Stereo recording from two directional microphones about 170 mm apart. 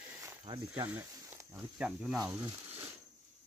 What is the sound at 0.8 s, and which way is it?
Speech, 15° right (ahead or behind).